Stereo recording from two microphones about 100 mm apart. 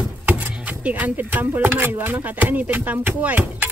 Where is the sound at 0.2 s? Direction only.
15° right (ahead or behind).